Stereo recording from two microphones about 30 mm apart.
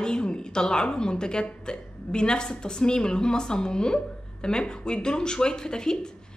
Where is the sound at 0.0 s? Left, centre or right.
Left.